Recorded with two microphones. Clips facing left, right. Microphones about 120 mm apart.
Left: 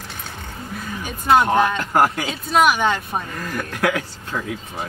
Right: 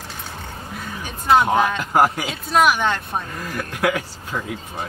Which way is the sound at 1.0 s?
Centre (ahead or behind).